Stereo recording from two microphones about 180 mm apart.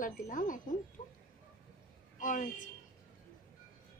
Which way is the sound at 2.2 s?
45° left (ahead or behind).